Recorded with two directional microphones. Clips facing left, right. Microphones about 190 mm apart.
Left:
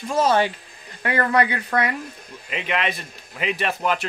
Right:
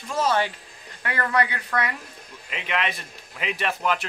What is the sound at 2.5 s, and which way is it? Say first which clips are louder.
A man's voice: left 3 dB; 5° left (ahead or behind).